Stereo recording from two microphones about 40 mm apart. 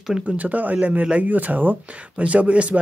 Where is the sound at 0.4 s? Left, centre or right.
Right.